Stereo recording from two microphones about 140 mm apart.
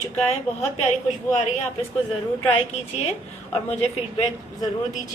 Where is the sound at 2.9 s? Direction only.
50° left (ahead or behind).